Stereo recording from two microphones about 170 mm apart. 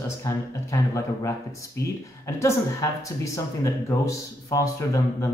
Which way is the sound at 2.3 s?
15° left (ahead or behind).